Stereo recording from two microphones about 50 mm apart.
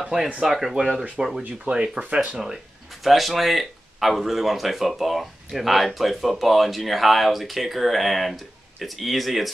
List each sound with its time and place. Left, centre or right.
0.0 s speech: centre
1.7 s speech: right
2.9 s speech: centre